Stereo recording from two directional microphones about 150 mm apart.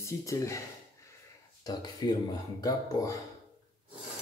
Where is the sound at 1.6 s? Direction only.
25° left (ahead or behind).